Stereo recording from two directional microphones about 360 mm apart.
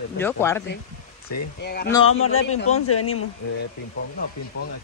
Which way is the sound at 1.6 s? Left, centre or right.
Left.